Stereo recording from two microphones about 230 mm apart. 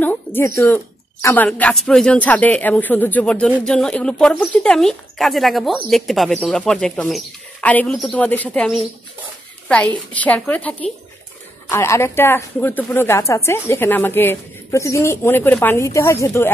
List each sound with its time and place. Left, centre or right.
0.0 s speech: centre